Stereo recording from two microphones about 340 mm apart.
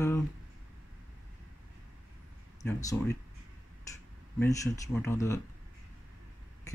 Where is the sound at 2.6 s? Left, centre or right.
Centre.